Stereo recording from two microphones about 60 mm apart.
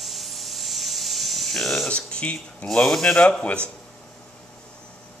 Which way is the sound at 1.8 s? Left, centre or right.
Centre.